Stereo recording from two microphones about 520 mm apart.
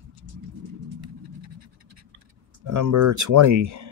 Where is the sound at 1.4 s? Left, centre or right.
Right.